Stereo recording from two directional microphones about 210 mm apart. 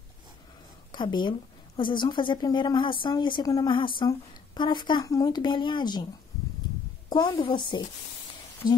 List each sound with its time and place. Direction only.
0.9 s a woman's voice: 20° left (ahead or behind)
7.1 s a woman's voice: 25° left (ahead or behind)